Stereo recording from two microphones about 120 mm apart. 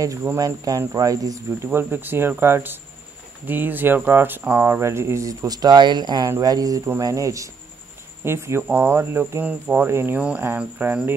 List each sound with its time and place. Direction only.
0.0 s speech: 25° right (ahead or behind)
1.7 s speech: 15° right (ahead or behind)